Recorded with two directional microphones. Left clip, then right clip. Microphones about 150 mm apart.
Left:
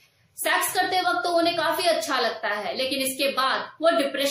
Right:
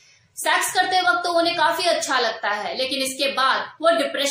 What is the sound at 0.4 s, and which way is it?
A woman's voice, 15° left (ahead or behind).